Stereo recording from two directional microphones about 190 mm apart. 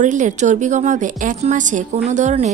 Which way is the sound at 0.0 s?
40° right (ahead or behind).